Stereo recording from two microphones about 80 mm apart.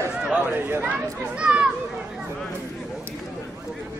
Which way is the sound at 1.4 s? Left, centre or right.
Centre.